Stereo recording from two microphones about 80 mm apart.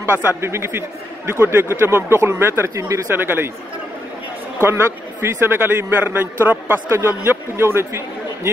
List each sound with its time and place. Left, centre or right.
0.4 s a man's voice: right
3.2 s speech: right
4.6 s a man's voice: right